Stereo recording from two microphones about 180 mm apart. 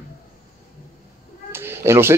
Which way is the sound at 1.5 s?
15° right (ahead or behind).